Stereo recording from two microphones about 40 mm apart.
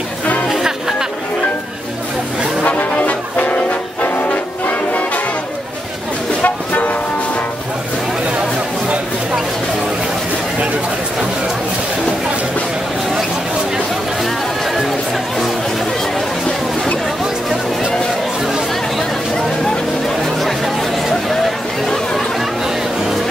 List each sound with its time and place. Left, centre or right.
0.5 s music: centre
2.6 s brass instrument: left
6.4 s train: left
20.3 s chatter: centre
21.8 s chatter: centre